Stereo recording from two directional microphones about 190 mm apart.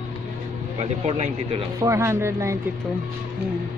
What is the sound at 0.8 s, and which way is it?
Speech, 35° right (ahead or behind).